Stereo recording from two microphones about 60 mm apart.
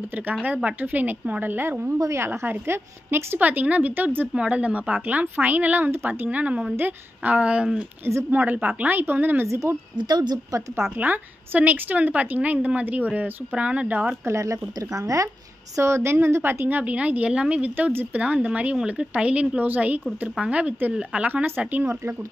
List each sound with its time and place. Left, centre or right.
0.1 s a woman's voice: right
2.1 s a woman's voice: right
3.3 s a woman's voice: right
4.3 s a woman's voice: centre
8.3 s speech: right
9.5 s speech: right
11.0 s a woman's voice: right
14.2 s speech: right
15.7 s a woman's voice: right
16.6 s a woman's voice: right
21.5 s speech: right